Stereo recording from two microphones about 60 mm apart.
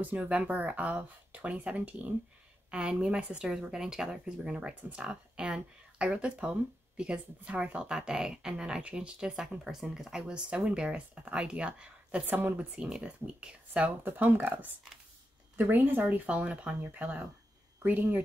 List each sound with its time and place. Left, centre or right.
0.0 s speech: right; by 10.3 s centre
10.3 s speech: centre
12.3 s speech: right
12.7 s speech: centre
14.0 s speech: right